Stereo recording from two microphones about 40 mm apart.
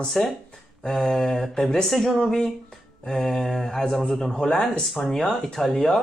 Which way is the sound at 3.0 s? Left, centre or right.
Centre.